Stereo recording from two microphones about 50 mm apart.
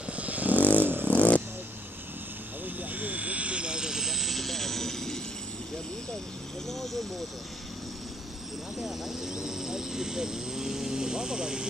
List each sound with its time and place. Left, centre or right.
0.1 s vehicle: right
0.6 s vehicle: left
2.8 s vehicle: right; by 5.2 s centre
6.7 s speech: centre
8.8 s speech: centre